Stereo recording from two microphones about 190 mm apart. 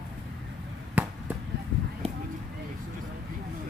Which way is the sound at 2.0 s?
30° right (ahead or behind).